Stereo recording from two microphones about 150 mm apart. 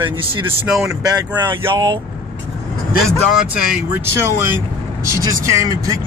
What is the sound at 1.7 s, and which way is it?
Speech, 30° right (ahead or behind).